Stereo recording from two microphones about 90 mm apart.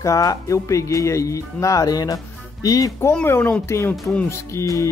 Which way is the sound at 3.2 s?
25° left (ahead or behind).